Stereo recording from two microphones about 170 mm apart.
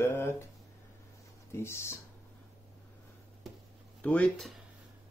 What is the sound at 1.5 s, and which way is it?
Speech, 15° left (ahead or behind).